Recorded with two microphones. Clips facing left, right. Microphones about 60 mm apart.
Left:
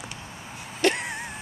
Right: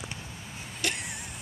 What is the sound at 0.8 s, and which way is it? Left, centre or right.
Music, left.